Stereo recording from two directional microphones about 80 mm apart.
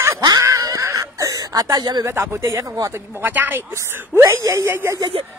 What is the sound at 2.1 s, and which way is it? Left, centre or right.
Speech, right.